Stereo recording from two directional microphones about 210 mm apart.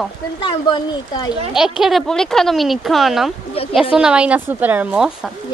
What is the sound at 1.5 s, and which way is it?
A woman's voice, centre (ahead or behind).